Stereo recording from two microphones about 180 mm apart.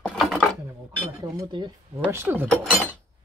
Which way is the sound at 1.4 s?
25° right (ahead or behind).